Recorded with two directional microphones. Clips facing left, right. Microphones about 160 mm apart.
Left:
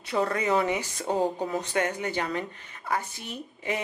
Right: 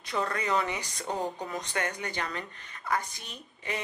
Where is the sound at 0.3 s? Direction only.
10° left (ahead or behind).